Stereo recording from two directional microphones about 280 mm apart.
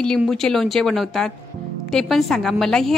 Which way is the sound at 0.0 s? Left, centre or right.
Centre.